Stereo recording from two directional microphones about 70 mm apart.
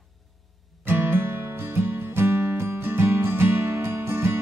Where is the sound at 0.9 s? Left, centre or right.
Right.